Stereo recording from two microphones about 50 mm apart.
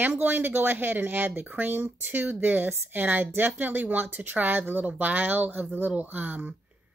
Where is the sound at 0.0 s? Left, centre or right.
Right.